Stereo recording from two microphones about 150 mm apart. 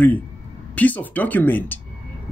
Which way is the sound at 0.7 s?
10° left (ahead or behind).